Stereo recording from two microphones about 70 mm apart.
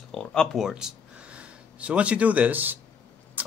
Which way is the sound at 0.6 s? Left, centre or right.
Centre.